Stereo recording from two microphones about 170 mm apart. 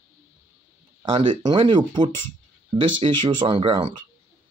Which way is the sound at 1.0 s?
30° right (ahead or behind).